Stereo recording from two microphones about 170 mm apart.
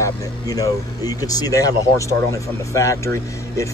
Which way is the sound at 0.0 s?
20° left (ahead or behind).